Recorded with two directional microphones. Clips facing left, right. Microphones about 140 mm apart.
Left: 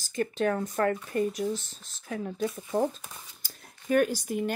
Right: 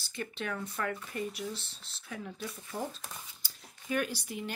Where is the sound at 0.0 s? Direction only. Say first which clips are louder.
Left 11 dB; 45° left (ahead or behind).